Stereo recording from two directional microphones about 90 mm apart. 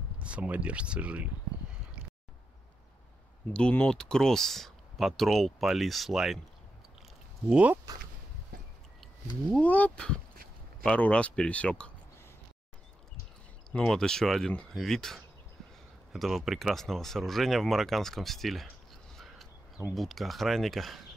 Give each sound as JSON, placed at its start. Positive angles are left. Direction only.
{"t": 0.2, "sound": "speech", "side_deg": -15}
{"t": 3.5, "sound": "speech", "side_deg": 10}
{"t": 7.4, "sound": "speech", "side_deg": -15}
{"t": 9.6, "sound": "speech", "side_deg": 20}
{"t": 13.7, "sound": "speech", "side_deg": 10}
{"t": 19.1, "sound": "a sound", "side_deg": 0}
{"t": 19.9, "sound": "speech", "side_deg": 0}